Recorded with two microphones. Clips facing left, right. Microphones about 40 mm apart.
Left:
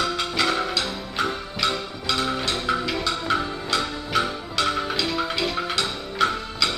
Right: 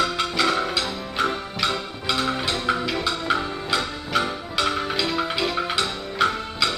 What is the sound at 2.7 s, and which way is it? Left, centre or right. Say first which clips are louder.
Music: right 1 dB; right.